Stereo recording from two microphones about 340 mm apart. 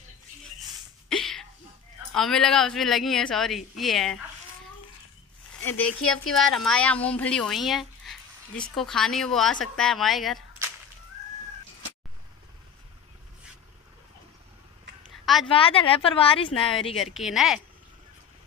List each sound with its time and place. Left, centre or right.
1.0 s a sound: centre
2.1 s speech: centre
5.6 s speech: centre
15.4 s a woman's voice: centre
16.9 s speech: centre